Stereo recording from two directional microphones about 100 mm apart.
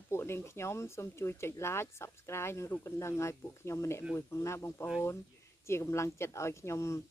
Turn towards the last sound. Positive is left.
turn(degrees=30)  # may be behind; listen again after turning